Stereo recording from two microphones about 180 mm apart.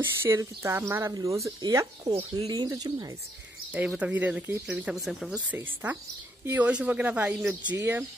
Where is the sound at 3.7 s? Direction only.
5° right (ahead or behind).